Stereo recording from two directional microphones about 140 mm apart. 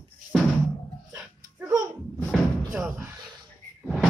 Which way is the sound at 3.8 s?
Centre (ahead or behind).